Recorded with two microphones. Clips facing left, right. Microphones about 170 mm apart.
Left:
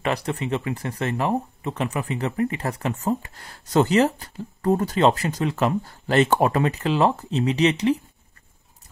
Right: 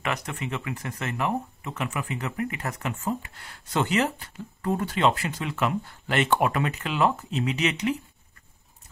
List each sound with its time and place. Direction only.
0.0 s speech: 35° left (ahead or behind)